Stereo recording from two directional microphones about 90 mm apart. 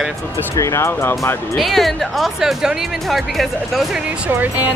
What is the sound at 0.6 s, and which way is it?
Speech, 35° left (ahead or behind).